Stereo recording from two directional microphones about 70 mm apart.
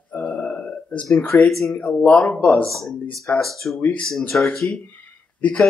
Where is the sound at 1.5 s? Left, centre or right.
Centre.